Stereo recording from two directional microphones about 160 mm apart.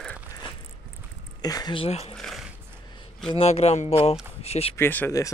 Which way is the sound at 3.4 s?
40° left (ahead or behind).